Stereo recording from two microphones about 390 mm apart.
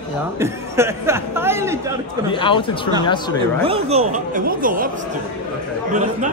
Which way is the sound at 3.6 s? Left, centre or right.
Centre.